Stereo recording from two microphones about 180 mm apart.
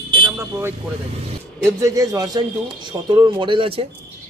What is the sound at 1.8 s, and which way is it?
Speech, 20° right (ahead or behind).